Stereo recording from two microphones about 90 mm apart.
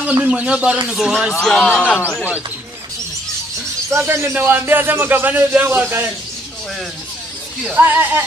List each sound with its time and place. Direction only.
0.0 s a man's voice: 15° right (ahead or behind)
1.7 s speech: 15° left (ahead or behind)
3.9 s speech: 25° right (ahead or behind)
7.7 s speech: 20° right (ahead or behind)